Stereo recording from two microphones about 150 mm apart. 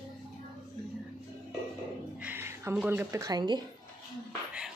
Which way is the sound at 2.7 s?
10° right (ahead or behind).